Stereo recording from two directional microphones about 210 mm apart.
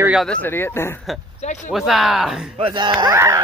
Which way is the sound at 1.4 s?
35° left (ahead or behind).